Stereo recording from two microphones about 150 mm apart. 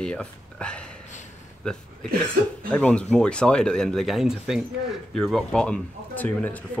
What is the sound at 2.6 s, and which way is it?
Speech, 10° left (ahead or behind).